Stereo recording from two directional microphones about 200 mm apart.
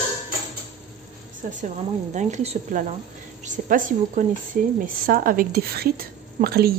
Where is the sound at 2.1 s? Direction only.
35° right (ahead or behind).